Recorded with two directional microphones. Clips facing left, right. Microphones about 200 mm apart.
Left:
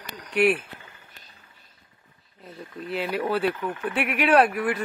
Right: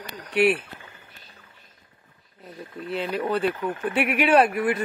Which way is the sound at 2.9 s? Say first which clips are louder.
Even; 5° left (ahead or behind).